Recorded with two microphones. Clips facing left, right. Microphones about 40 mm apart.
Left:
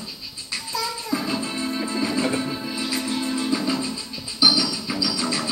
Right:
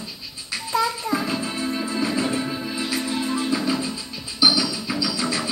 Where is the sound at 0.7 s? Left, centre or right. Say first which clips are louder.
Right 5 dB; right.